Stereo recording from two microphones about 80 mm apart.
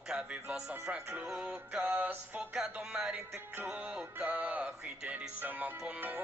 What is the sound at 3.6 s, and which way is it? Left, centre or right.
Music, centre.